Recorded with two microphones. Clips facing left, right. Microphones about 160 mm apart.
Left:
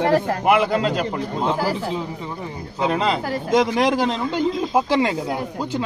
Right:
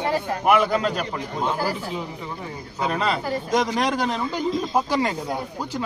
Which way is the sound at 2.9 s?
25° left (ahead or behind).